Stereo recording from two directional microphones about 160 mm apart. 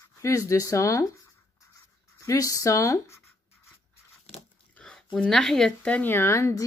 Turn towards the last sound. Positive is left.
turn(degrees=15)  # may be behind; listen again after turning